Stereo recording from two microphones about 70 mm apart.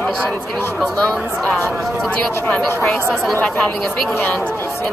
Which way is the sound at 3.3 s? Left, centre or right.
Left.